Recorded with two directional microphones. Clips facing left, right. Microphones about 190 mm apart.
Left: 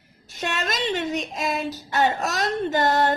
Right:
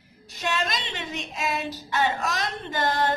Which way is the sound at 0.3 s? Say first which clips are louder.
Even; 50° left (ahead or behind).